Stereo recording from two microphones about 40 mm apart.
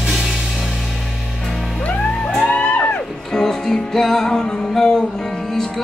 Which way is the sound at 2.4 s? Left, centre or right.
Left.